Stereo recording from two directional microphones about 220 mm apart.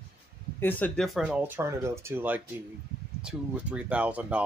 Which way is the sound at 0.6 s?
10° left (ahead or behind).